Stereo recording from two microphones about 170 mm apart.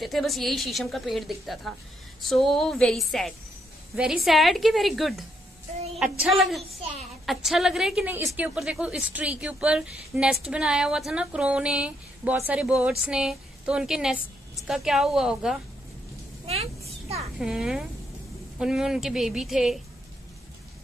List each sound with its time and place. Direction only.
0.0 s a woman's voice: centre (ahead or behind)
16.4 s a sound: 35° right (ahead or behind)
17.4 s a woman's voice: 5° right (ahead or behind)